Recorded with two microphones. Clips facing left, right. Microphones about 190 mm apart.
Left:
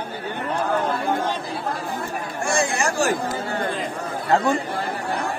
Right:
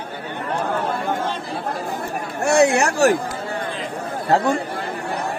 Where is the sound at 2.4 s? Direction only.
65° right (ahead or behind).